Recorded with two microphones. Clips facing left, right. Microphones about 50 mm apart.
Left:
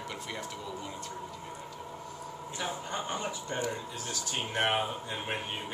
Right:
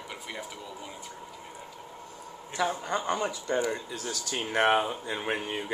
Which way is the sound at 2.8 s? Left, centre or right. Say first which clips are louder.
Right 5 dB; right.